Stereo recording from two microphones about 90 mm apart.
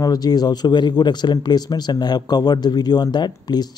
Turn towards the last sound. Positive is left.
turn(degrees=50)  # may be behind; listen again after turning